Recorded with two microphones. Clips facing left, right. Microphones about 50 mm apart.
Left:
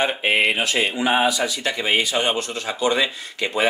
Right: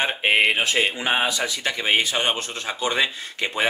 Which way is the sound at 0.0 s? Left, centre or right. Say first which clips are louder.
Even; right.